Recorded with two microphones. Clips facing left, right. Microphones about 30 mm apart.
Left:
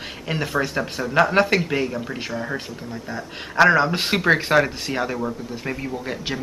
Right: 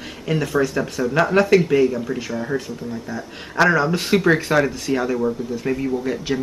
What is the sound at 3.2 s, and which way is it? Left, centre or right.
Speech, centre.